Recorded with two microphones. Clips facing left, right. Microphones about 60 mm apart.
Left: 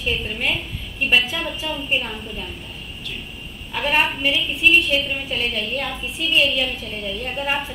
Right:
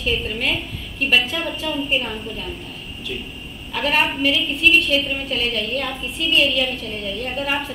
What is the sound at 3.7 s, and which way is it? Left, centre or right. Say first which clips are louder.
A woman's voice: even; centre.